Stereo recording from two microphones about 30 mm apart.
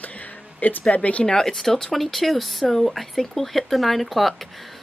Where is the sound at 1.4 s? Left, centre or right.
Centre.